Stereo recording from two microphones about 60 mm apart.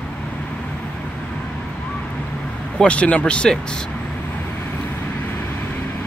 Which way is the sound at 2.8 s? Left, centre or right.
Centre.